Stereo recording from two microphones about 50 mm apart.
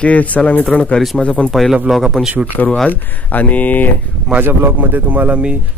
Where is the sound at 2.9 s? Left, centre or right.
Left.